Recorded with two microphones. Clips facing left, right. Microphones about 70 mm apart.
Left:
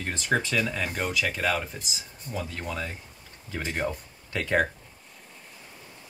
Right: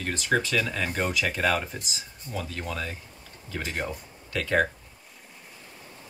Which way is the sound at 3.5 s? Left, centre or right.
Centre.